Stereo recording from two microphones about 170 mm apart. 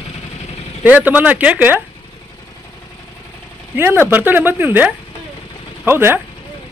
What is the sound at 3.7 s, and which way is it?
Speech, 10° right (ahead or behind).